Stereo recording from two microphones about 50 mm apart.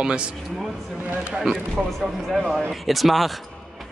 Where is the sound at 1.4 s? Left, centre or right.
Centre.